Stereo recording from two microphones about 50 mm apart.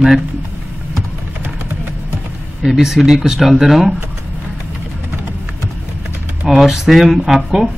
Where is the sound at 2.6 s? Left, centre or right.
Centre.